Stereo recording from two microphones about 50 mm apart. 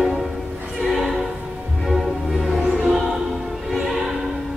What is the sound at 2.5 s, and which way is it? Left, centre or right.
Music, centre.